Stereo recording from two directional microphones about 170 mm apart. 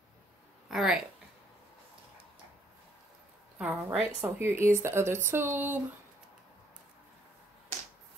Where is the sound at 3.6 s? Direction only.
5° right (ahead or behind).